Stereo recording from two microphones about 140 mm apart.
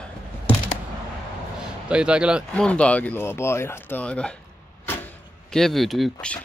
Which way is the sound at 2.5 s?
10° left (ahead or behind).